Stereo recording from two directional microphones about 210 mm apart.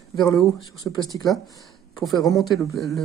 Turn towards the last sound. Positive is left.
turn(degrees=0)  # may be behind; listen again after turning